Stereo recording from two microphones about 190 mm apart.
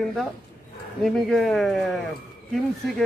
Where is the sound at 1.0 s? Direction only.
Centre (ahead or behind).